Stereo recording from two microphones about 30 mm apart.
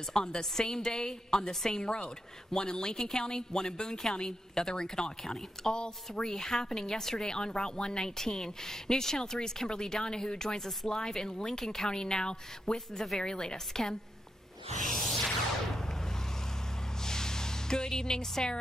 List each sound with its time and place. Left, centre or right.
0.1 s a woman's voice: left
12.9 s speech: centre
13.2 s a woman's voice: left
14.9 s music: centre
17.0 s music: centre